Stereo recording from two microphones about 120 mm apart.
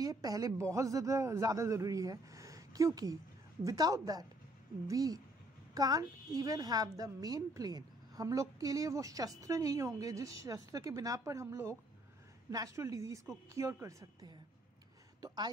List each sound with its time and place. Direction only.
0.0 s a woman's voice: 30° right (ahead or behind)